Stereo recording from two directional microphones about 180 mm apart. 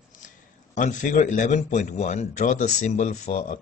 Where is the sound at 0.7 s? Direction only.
45° left (ahead or behind).